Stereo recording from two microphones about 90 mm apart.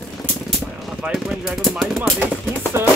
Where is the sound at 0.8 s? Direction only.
5° right (ahead or behind).